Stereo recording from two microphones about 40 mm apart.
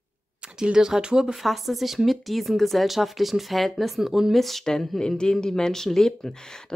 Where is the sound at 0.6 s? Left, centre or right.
Centre.